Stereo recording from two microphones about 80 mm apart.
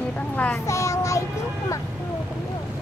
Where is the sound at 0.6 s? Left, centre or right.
Left.